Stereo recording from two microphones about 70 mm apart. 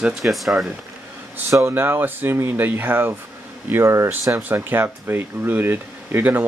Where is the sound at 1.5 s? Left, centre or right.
Right.